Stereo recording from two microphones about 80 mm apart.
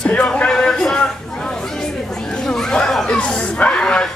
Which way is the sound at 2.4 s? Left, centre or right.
Centre.